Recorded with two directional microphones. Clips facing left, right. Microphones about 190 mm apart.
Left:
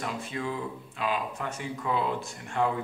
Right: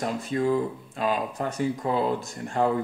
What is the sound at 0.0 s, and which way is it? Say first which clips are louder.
Speech: right 7 dB; 40° right (ahead or behind).